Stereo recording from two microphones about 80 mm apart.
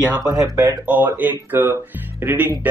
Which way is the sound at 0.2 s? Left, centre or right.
Right.